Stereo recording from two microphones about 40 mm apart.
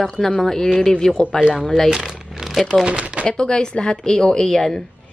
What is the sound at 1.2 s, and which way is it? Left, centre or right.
Speech, right.